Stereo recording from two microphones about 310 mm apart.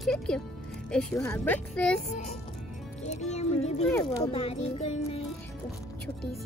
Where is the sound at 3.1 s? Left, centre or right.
Left.